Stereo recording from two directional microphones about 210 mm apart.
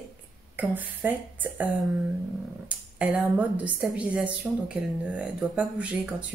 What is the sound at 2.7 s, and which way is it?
A woman's voice, 5° right (ahead or behind).